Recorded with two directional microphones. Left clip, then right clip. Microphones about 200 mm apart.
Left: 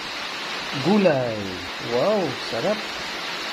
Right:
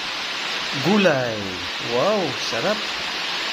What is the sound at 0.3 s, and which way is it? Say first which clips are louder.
Speech: right 3 dB; centre (ahead or behind).